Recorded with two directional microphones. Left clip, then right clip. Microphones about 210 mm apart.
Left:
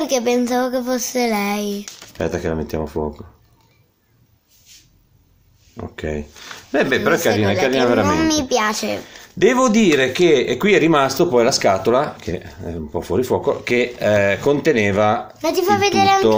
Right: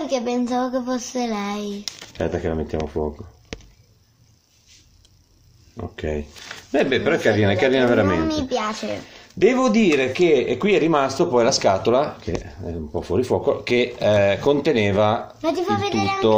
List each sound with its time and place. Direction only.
0.0 s speech: 40° left (ahead or behind)
2.1 s speech: 10° left (ahead or behind)
5.8 s a man's voice: 10° left (ahead or behind)
8.3 s a woman's voice: 40° left (ahead or behind)
9.1 s speech: 15° left (ahead or behind)
15.4 s a woman's voice: 45° left (ahead or behind)